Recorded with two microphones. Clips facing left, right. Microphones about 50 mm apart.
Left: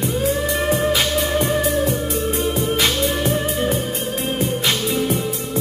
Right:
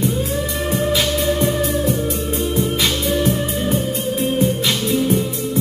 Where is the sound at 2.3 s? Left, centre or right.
Centre.